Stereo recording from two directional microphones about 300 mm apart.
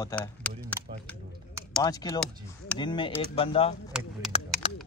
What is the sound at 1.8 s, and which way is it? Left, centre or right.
Speech, centre.